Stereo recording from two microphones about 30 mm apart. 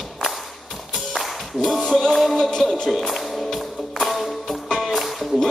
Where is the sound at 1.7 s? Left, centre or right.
Centre.